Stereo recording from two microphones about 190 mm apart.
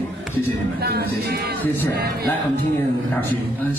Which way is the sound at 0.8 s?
55° right (ahead or behind).